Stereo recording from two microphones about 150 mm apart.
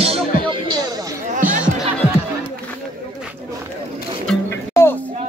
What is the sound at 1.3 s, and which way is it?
Music, 55° right (ahead or behind).